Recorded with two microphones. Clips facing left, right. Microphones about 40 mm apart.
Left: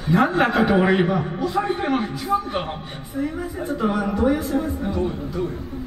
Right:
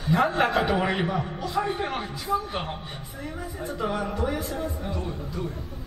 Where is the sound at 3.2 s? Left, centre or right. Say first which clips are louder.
Left 9 dB; left.